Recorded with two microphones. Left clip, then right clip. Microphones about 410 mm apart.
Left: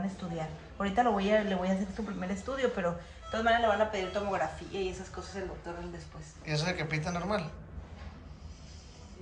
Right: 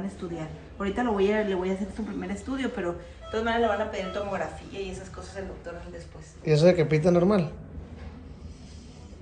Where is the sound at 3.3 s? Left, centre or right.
Left.